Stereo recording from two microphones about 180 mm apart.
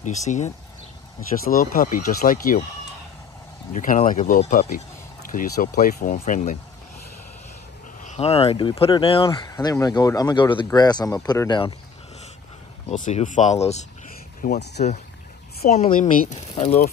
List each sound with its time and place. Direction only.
0.0 s speech: 40° left (ahead or behind)
1.5 s speech: 50° left (ahead or behind)
3.7 s speech: 45° left (ahead or behind)
8.0 s speech: 35° left (ahead or behind)
9.5 s speech: 20° left (ahead or behind)
12.9 s speech: 45° left (ahead or behind)
14.4 s speech: 60° left (ahead or behind)
15.7 s speech: 40° left (ahead or behind)